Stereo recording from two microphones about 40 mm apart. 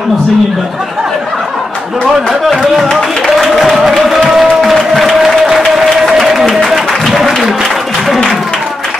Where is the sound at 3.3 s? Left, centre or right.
Centre.